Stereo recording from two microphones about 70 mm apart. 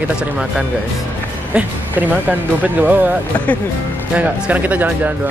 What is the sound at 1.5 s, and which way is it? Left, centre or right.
Speech, right.